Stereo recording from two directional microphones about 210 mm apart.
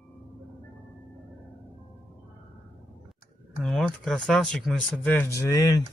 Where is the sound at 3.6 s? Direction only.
Centre (ahead or behind).